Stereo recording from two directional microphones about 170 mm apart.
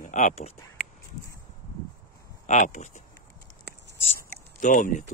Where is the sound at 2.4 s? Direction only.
45° left (ahead or behind).